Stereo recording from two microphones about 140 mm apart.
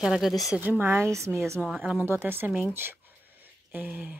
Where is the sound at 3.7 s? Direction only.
10° right (ahead or behind).